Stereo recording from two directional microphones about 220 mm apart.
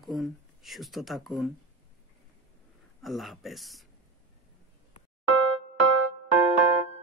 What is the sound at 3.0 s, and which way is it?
Speech, centre (ahead or behind).